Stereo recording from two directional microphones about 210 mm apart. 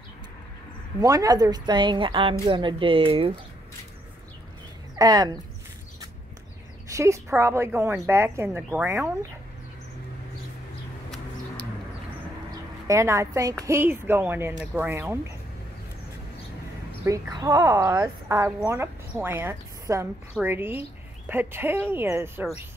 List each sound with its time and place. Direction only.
1.0 s speech: 15° right (ahead or behind)
4.9 s speech: 20° right (ahead or behind)
6.9 s a woman's voice: 15° right (ahead or behind)
12.4 s a woman's voice: 15° right (ahead or behind)
17.0 s a woman's voice: 15° right (ahead or behind)